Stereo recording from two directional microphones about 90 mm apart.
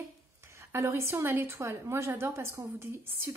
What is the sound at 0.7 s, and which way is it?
Speech, 30° right (ahead or behind).